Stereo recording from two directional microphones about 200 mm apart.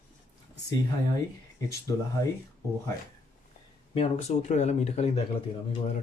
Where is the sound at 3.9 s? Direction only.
35° left (ahead or behind).